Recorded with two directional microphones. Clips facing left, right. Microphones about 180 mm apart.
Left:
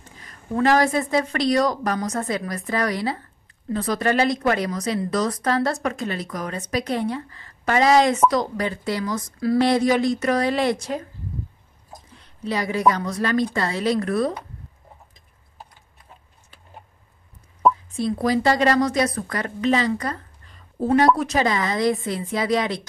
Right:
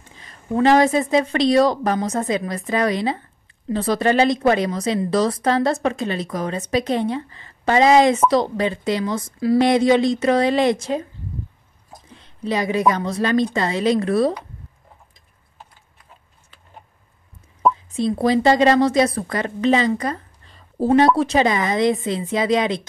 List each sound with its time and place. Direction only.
0.2 s speech: 25° right (ahead or behind)
12.2 s speech: 20° right (ahead or behind)
17.9 s speech: 25° right (ahead or behind)